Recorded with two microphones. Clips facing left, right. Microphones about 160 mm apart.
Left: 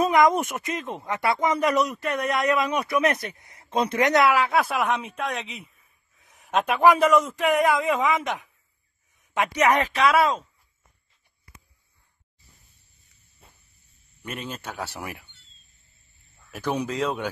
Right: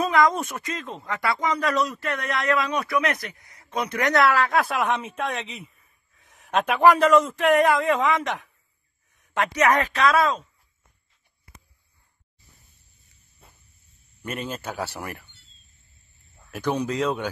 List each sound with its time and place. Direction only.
0.0 s speech: 20° left (ahead or behind); by 6.8 s centre (ahead or behind)
6.9 s speech: 15° left (ahead or behind)
7.2 s speech: centre (ahead or behind)
9.9 s speech: 10° left (ahead or behind)
14.2 s speech: centre (ahead or behind)
16.4 s speech: centre (ahead or behind)